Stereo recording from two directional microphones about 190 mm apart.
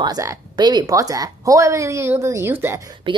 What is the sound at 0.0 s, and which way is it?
Speech, 20° right (ahead or behind).